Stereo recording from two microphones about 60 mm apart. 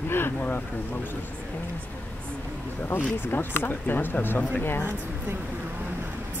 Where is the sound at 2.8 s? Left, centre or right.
Left.